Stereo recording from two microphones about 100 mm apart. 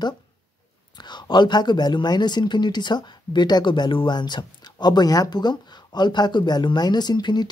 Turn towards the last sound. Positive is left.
turn(degrees=45)  # may be behind; listen again after turning